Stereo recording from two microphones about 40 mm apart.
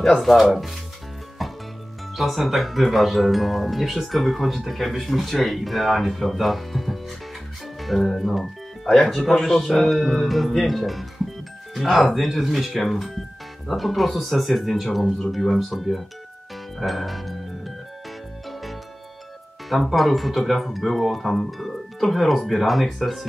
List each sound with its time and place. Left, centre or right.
0.0 s speech: centre
1.4 s music: centre
2.1 s speech: centre
16.7 s music: centre
19.7 s speech: centre